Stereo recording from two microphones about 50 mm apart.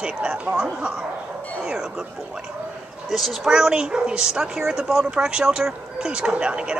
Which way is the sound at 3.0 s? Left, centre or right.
Centre.